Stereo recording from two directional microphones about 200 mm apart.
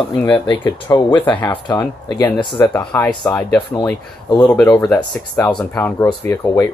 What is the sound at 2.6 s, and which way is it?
Speech, 10° left (ahead or behind).